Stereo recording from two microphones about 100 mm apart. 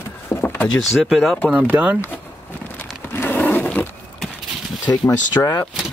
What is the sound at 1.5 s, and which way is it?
Speech, 15° right (ahead or behind).